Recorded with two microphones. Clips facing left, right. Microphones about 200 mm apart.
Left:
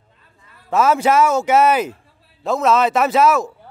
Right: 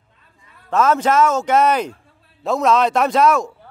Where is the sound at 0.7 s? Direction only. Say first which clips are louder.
Left 1 dB; 10° left (ahead or behind).